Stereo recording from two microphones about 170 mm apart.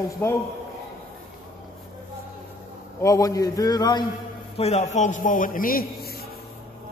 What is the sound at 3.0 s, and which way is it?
A man's voice, 20° left (ahead or behind).